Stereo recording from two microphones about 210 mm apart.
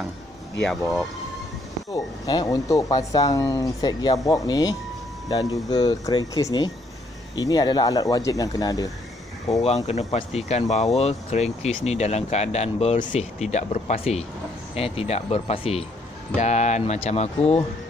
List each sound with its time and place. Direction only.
0.6 s speech: 5° left (ahead or behind)
1.9 s speech: 15° left (ahead or behind)
9.6 s speech: 30° left (ahead or behind)